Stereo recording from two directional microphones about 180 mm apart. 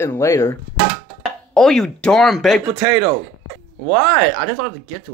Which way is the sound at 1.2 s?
Centre (ahead or behind).